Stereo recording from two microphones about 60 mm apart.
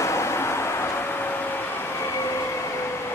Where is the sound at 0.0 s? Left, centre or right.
Left.